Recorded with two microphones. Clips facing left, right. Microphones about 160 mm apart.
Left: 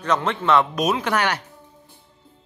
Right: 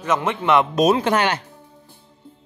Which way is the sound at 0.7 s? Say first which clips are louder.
Right 5 dB; 30° right (ahead or behind).